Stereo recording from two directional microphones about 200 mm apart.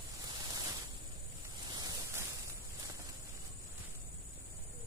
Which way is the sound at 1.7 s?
20° right (ahead or behind).